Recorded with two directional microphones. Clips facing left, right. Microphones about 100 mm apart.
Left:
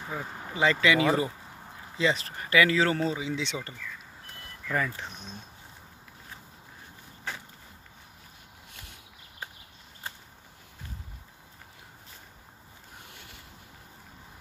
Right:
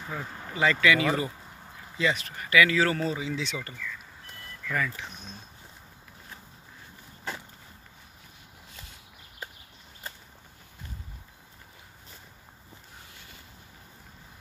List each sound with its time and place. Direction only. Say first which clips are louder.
0.0 s speech: left 1 dB; 10° left (ahead or behind); by 5.0 s 30° left (ahead or behind)